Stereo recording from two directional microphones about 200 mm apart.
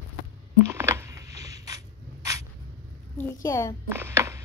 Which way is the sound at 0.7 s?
15° right (ahead or behind).